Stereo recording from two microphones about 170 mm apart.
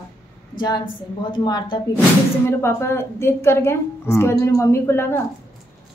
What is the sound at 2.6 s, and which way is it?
A woman's voice, 15° left (ahead or behind).